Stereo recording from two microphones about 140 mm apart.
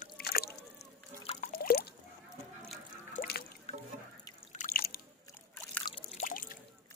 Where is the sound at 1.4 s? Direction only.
90° left.